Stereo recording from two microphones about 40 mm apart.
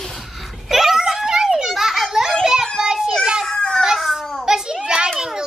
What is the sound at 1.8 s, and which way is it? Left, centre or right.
Children playing, centre.